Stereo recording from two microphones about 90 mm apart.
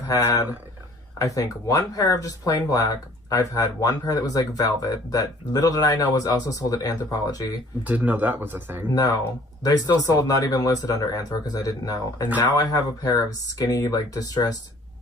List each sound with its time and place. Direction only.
1.1 s speech: 40° left (ahead or behind)
7.8 s speech: 20° right (ahead or behind)
9.6 s speech: 45° left (ahead or behind)